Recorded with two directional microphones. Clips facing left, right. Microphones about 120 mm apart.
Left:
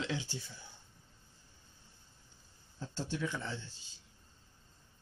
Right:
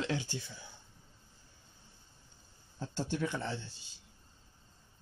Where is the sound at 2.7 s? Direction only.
55° right (ahead or behind).